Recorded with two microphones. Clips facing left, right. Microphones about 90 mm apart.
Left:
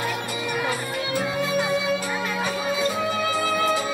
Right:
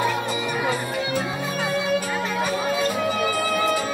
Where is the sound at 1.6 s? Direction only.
10° left (ahead or behind).